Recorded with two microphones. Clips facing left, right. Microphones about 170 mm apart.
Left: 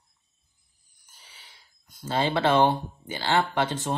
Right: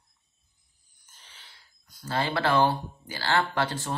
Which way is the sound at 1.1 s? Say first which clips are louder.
Even; 10° left (ahead or behind).